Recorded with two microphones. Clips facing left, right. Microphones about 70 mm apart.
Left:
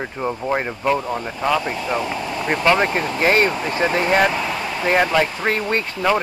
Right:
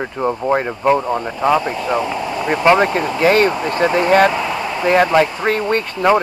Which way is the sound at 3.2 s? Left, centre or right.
Right.